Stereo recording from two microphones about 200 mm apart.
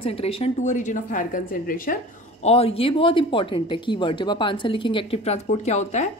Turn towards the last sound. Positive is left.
turn(degrees=35)  # may be behind; listen again after turning